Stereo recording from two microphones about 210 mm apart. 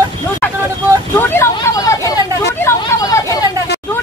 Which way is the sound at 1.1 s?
10° left (ahead or behind).